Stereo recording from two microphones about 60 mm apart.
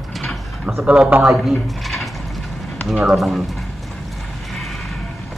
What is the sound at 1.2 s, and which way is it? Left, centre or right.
Speech, centre.